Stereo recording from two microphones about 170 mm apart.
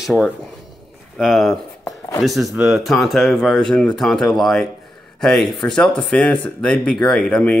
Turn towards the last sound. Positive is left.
turn(degrees=10)  # may be behind; listen again after turning